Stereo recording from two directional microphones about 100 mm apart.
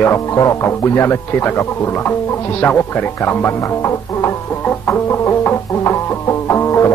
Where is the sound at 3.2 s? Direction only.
25° left (ahead or behind).